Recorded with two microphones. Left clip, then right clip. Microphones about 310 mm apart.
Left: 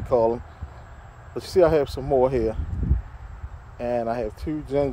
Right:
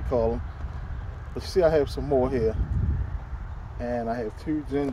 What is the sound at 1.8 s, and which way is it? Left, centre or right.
Speech, centre.